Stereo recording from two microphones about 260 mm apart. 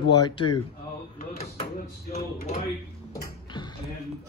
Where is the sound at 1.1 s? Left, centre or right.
Left.